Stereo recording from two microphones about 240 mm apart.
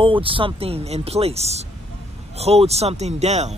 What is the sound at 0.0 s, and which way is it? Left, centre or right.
Speech, right.